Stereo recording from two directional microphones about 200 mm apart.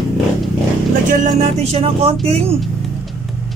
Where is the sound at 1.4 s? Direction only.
30° right (ahead or behind).